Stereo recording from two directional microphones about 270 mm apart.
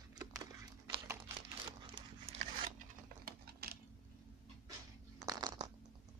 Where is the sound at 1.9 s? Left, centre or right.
Right.